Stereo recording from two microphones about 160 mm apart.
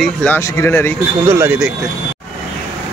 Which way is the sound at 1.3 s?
15° right (ahead or behind).